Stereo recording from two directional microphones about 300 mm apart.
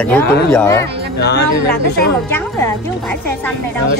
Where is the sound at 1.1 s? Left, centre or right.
Left.